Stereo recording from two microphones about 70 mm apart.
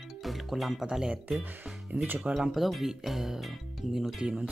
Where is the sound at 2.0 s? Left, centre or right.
Right.